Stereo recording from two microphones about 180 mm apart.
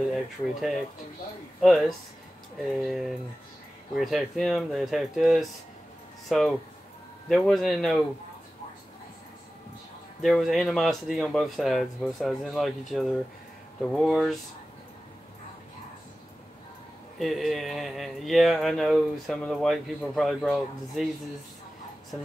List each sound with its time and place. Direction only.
0.1 s speech: centre (ahead or behind)
10.2 s speech: centre (ahead or behind)
17.2 s speech: centre (ahead or behind)